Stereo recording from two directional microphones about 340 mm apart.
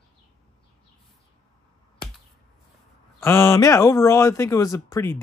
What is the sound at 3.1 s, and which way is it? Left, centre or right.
Speech, centre.